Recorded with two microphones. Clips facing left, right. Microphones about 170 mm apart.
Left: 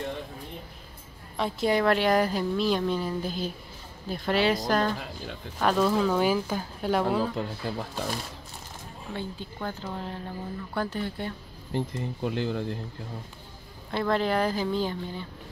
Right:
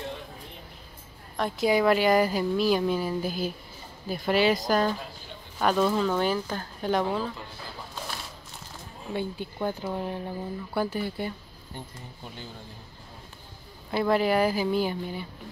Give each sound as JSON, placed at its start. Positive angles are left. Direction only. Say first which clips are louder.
{"t": 1.3, "sound": "a woman's voice", "louder": "right 1 dB", "side_deg": 0}
{"t": 9.1, "sound": "speech", "louder": "right 4 dB", "side_deg": -15}
{"t": 11.7, "sound": "speech", "louder": "left 12 dB", "side_deg": 85}
{"t": 13.8, "sound": "speech", "louder": "right 2 dB", "side_deg": -10}